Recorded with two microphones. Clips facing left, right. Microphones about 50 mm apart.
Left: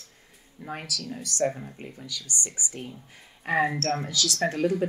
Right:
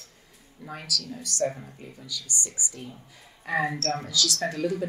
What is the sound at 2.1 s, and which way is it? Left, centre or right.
Speech, left.